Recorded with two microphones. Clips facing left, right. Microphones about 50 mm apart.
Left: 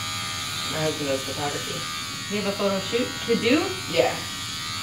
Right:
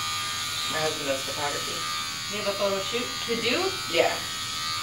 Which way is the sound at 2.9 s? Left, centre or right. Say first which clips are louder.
Left 5 dB; centre.